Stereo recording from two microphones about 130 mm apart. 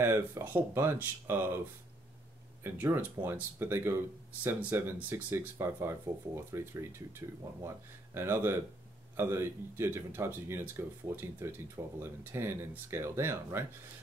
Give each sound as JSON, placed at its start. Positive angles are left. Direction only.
{"t": 0.0, "sound": "speech", "side_deg": -15}
{"t": 2.6, "sound": "speech", "side_deg": -15}